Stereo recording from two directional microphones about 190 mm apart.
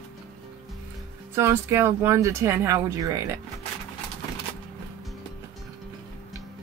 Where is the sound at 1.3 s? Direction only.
15° right (ahead or behind).